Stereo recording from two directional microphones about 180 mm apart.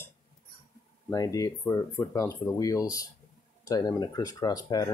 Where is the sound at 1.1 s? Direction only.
20° left (ahead or behind).